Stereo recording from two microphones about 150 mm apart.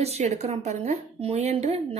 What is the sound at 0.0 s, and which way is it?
A woman's voice, 45° right (ahead or behind).